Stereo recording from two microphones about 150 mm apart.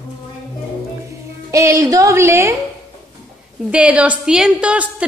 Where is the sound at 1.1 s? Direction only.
20° right (ahead or behind).